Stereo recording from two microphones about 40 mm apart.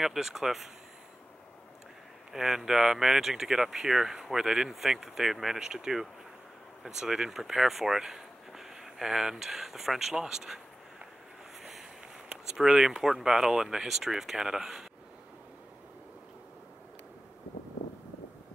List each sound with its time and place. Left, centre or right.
0.0 s speech: centre
2.3 s speech: centre
12.3 s speech: centre